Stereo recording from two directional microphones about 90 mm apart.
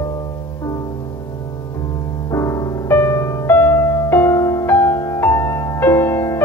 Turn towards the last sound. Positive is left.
turn(degrees=25)  # may be behind; listen again after turning